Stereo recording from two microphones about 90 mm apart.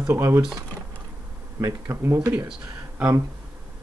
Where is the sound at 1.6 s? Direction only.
30° right (ahead or behind).